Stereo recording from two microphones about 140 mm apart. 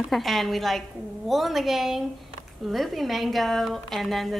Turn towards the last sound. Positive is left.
turn(degrees=0)  # may be behind; listen again after turning